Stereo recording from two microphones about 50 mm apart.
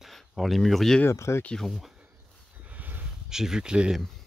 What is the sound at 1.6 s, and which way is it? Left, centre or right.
Speech, centre.